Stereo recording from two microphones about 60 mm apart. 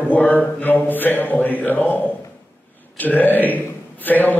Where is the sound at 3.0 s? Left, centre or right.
Left.